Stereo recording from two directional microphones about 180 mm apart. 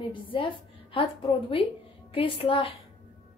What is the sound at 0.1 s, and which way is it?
A woman's voice, 30° left (ahead or behind).